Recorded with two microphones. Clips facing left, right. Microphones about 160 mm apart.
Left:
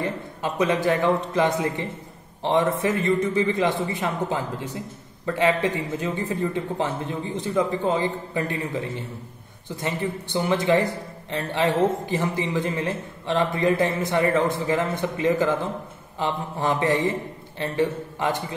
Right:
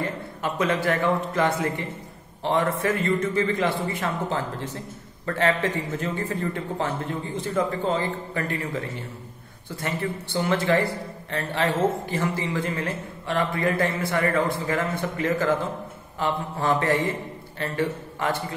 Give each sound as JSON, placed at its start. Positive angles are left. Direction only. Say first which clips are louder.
{"t": 0.0, "sound": "a man's voice", "louder": "left 1 dB", "side_deg": 15}